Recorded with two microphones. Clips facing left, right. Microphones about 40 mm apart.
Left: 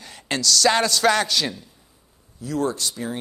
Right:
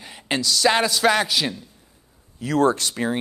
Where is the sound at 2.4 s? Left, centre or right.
Right.